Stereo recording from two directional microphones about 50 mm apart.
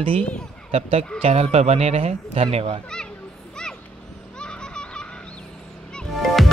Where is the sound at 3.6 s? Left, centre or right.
Centre.